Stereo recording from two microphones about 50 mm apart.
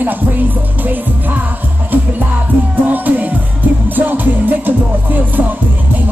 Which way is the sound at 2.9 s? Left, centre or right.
Right.